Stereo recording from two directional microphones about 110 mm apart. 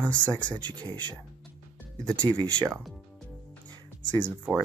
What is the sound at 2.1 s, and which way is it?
Speech, 10° left (ahead or behind).